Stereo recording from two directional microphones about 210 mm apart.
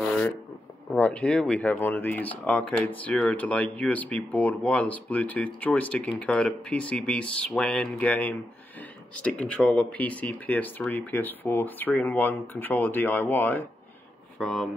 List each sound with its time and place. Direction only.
0.9 s speech: 5° left (ahead or behind)